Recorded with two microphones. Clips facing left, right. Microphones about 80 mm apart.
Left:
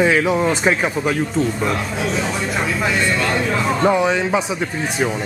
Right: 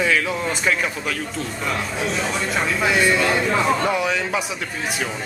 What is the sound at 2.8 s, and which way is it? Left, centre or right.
Speech, centre.